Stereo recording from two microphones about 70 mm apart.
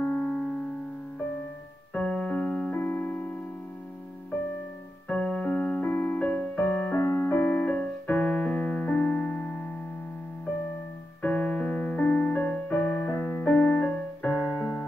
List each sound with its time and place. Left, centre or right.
0.0 s music: centre
2.0 s keyboard: centre
5.0 s keyboard: centre
11.2 s music: centre